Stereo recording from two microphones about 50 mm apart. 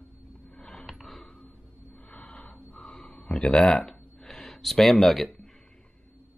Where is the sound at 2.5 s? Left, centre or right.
Centre.